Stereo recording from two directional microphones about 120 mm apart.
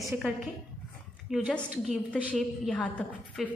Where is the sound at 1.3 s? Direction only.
Centre (ahead or behind).